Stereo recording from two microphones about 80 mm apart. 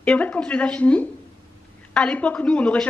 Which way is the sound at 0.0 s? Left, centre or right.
Centre.